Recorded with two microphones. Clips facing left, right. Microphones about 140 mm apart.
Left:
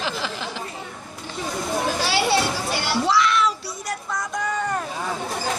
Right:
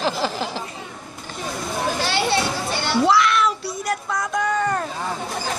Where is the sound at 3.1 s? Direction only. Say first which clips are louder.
Even; 60° right (ahead or behind).